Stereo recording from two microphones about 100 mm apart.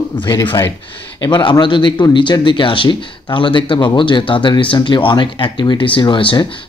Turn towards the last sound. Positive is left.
turn(degrees=55)  # may be behind; listen again after turning